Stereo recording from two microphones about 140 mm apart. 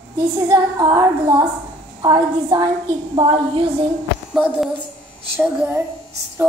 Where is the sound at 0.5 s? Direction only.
30° right (ahead or behind).